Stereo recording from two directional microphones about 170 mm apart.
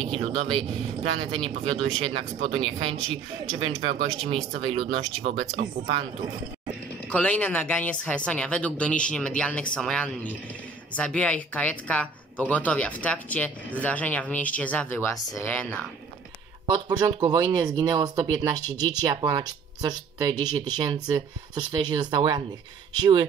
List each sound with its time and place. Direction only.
0.0 s speech: 30° right (ahead or behind)
7.1 s a woman's voice: 5° left (ahead or behind)
16.6 s speech: 25° right (ahead or behind)